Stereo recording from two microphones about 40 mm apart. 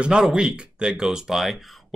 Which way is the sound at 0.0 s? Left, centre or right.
Right.